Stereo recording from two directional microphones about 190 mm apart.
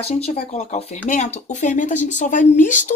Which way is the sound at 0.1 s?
35° left (ahead or behind).